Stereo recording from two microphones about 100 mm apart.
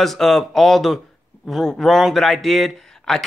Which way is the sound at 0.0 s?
Centre (ahead or behind).